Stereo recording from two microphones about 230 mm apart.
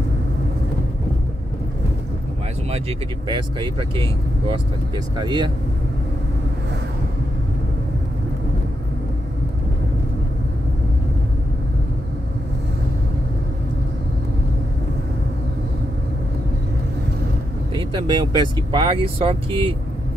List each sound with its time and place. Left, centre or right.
3.3 s speech: centre
17.7 s speech: right